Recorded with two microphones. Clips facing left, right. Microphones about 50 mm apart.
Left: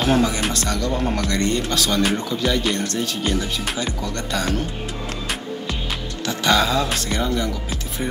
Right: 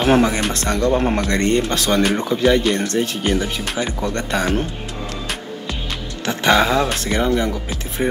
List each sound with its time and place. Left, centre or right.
0.1 s speech: right
6.2 s speech: right